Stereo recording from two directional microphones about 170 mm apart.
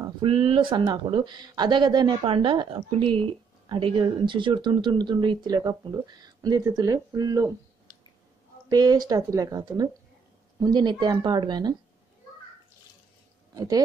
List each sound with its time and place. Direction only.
0.0 s speech: 30° right (ahead or behind)
8.6 s speech: 25° right (ahead or behind)
13.6 s speech: 20° right (ahead or behind)